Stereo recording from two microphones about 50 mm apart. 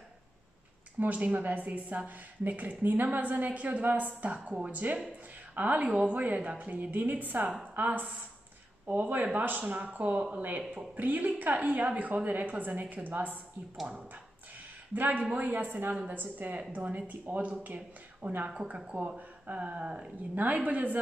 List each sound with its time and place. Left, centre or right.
0.9 s a woman's voice: right
15.0 s a woman's voice: right